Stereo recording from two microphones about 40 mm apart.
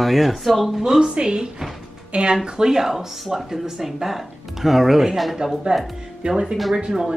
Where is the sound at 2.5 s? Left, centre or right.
Centre.